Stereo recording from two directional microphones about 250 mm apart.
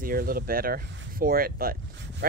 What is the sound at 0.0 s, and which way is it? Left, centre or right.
Speech, right.